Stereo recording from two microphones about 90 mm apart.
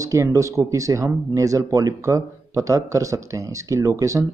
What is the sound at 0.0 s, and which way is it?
Speech, 35° right (ahead or behind).